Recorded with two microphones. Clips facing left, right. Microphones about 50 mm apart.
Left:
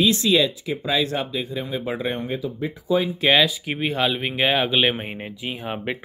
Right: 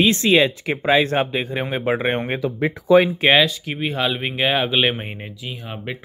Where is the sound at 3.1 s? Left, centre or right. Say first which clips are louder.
Right 3 dB; right.